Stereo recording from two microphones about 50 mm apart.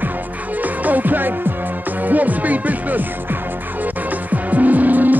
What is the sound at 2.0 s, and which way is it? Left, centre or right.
Speech, right.